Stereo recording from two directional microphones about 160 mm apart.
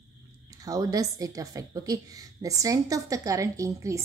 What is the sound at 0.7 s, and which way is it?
A woman's voice, 20° right (ahead or behind).